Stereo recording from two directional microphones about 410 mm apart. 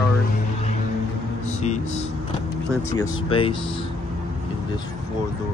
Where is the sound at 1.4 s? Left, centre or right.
Centre.